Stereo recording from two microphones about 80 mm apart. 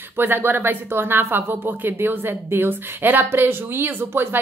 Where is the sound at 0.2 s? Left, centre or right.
Right.